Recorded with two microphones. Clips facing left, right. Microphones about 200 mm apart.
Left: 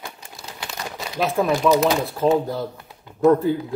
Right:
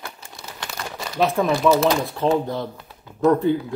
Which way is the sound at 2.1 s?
Centre (ahead or behind).